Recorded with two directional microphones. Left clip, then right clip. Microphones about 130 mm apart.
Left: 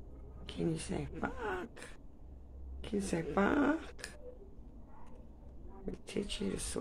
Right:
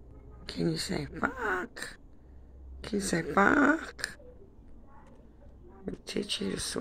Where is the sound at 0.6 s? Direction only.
30° right (ahead or behind).